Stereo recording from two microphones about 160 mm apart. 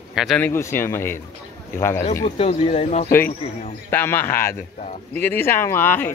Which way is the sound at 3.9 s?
15° left (ahead or behind).